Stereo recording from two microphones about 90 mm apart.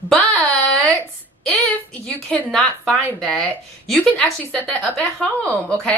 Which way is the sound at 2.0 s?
10° left (ahead or behind).